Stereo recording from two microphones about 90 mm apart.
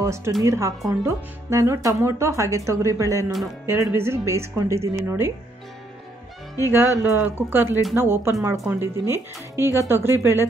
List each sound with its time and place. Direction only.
0.0 s speech: 30° right (ahead or behind)
6.7 s speech: 25° right (ahead or behind)